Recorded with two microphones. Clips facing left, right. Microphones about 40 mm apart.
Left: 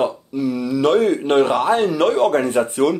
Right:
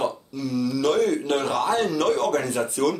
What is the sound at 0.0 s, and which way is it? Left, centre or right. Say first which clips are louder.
Speech: left 7 dB; left.